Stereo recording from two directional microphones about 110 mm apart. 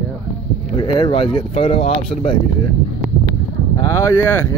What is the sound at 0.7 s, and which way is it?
Speech, 50° left (ahead or behind).